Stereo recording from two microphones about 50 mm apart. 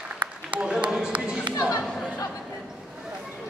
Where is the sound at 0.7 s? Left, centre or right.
Centre.